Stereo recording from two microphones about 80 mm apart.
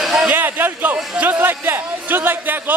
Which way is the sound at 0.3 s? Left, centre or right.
Right.